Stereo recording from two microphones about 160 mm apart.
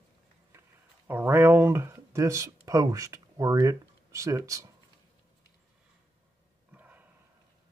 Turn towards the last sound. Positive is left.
turn(degrees=-10)  # may be behind; listen again after turning